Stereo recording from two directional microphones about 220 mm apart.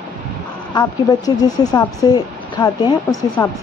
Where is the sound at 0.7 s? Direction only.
20° left (ahead or behind).